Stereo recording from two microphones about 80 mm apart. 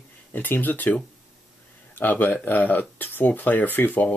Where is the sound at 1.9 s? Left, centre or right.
Left.